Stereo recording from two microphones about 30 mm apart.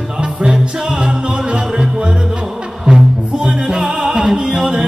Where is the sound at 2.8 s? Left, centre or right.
Centre.